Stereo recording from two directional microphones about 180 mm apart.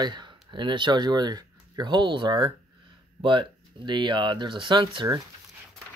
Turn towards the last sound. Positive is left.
turn(degrees=-20)  # may be behind; listen again after turning